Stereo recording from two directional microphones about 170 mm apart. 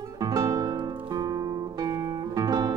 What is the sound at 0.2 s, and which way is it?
Music, 20° right (ahead or behind).